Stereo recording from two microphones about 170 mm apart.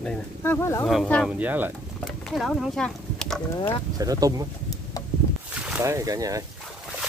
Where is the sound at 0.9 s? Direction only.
Centre (ahead or behind).